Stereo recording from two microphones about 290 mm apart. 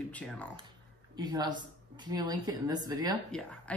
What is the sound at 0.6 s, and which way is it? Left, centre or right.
Speech, centre.